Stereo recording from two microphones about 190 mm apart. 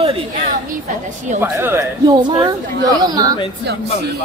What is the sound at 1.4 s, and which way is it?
A woman's voice, 10° right (ahead or behind).